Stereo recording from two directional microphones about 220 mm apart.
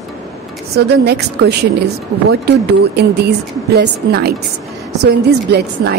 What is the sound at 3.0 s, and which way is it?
A woman's voice, 45° right (ahead or behind).